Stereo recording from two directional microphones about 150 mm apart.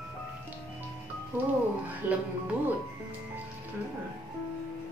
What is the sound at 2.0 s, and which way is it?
Speech, 10° right (ahead or behind).